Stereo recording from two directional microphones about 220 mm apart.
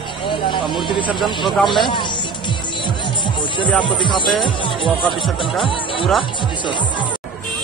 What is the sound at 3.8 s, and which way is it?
Speech, 20° left (ahead or behind).